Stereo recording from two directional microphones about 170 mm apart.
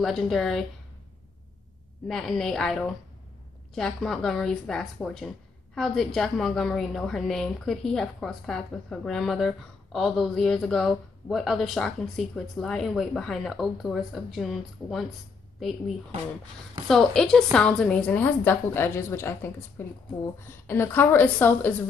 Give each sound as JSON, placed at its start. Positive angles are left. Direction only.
{"t": 0.0, "sound": "speech", "side_deg": 0}
{"t": 2.0, "sound": "speech", "side_deg": 0}
{"t": 16.8, "sound": "a woman's voice", "side_deg": 0}